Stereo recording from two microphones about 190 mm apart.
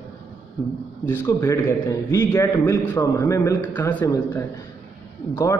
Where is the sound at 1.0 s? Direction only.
15° left (ahead or behind).